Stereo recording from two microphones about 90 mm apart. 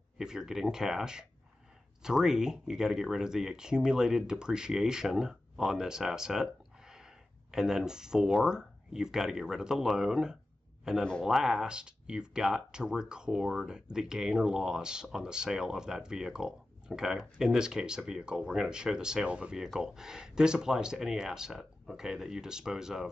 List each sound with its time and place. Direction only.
0.2 s speech: 5° right (ahead or behind)